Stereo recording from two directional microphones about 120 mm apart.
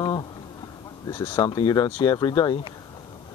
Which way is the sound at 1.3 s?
40° left (ahead or behind).